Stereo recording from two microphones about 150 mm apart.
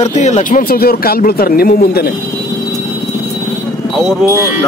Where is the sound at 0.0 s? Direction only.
50° left (ahead or behind); by 2.1 s 90° left.